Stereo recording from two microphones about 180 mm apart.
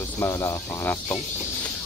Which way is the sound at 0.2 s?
15° left (ahead or behind).